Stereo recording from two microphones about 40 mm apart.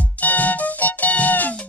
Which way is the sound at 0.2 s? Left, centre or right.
Left.